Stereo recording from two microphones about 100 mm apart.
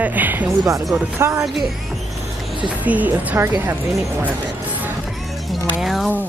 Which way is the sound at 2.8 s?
15° right (ahead or behind).